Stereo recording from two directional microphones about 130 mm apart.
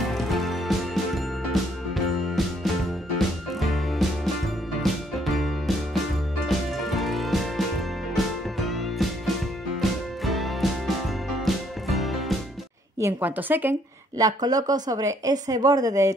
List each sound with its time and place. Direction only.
0.0 s music: centre (ahead or behind)
13.0 s a woman's voice: 15° right (ahead or behind)
14.1 s speech: 30° right (ahead or behind)